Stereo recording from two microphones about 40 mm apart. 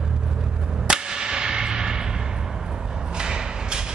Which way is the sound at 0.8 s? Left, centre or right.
Centre.